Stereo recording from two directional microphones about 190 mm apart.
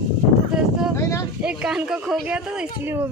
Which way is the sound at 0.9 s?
15° left (ahead or behind).